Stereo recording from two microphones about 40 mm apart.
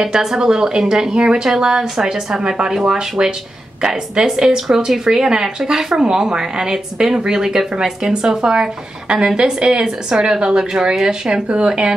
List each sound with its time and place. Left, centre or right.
0.0 s a woman's voice: centre